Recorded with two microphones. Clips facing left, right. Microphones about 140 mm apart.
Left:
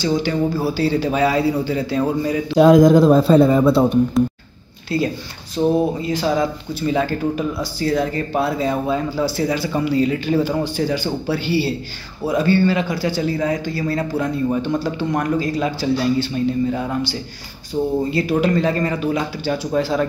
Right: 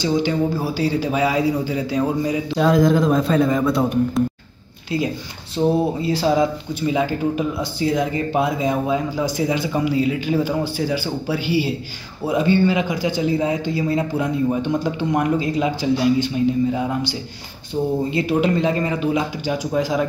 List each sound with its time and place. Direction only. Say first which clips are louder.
0.0 s a man's voice: even; 20° right (ahead or behind)
2.6 s a man's voice: left 6 dB; 45° left (ahead or behind); by 4.0 s 30° left (ahead or behind)
4.9 s a man's voice: left 2 dB; 15° right (ahead or behind)
6.0 s a man's voice: right 1 dB; 25° right (ahead or behind); by 17.1 s 10° right (ahead or behind)
18.1 s a man's voice: even; 20° right (ahead or behind)